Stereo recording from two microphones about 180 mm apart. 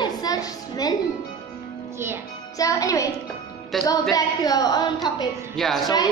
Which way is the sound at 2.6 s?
20° left (ahead or behind).